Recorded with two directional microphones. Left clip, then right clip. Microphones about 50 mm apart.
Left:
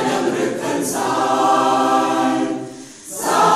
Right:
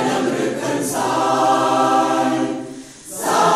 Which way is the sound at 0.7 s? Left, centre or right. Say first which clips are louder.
Even; left.